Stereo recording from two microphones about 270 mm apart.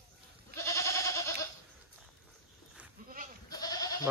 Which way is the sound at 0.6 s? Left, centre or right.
Centre.